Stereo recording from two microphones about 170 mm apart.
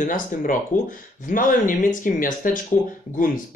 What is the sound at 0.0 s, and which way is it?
Speech, 50° left (ahead or behind).